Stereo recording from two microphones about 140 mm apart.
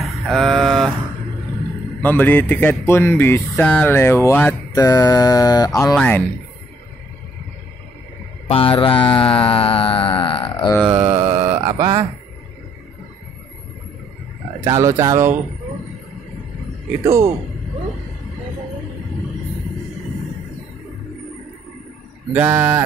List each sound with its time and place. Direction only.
0.0 s a sound: centre (ahead or behind)
2.0 s speech: 15° left (ahead or behind)
5.9 s speech: 10° left (ahead or behind)
8.5 s mantra: 40° left (ahead or behind)
10.9 s mantra: 15° right (ahead or behind)
14.6 s speech: 20° right (ahead or behind)
17.0 s speech: 20° right (ahead or behind)
22.3 s livestock: 15° right (ahead or behind)